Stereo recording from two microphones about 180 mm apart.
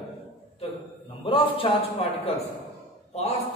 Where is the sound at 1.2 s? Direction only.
30° left (ahead or behind).